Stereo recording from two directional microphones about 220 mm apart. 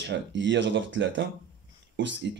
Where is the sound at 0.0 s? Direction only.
55° right (ahead or behind).